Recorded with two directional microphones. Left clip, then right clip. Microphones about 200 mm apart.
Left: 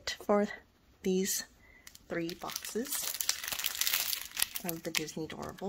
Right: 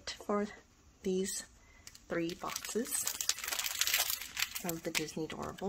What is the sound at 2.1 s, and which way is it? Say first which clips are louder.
Speech: even; 5° left (ahead or behind).